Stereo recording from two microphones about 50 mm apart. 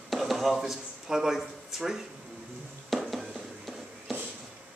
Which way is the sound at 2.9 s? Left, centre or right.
Centre.